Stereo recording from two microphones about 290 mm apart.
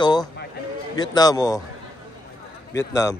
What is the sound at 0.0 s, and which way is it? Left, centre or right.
Speech, centre.